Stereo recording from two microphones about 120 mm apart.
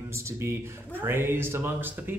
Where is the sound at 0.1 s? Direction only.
25° right (ahead or behind).